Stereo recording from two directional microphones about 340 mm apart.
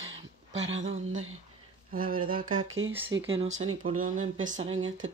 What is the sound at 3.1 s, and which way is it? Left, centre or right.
Speech, right.